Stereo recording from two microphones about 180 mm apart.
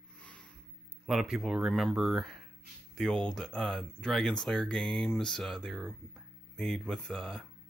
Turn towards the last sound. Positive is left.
turn(degrees=5)  # may be behind; listen again after turning